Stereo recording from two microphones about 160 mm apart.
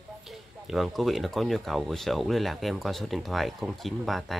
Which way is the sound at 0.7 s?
Centre (ahead or behind).